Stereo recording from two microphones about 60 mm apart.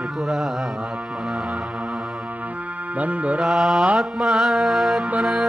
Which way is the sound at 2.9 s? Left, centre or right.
Right.